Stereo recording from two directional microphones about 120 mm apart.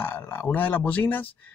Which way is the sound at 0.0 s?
15° left (ahead or behind).